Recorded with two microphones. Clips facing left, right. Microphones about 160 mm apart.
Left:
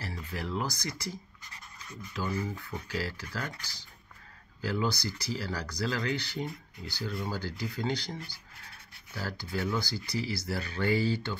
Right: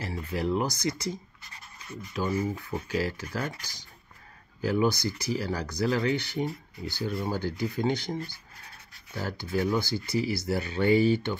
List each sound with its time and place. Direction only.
0.0 s speech: 20° right (ahead or behind)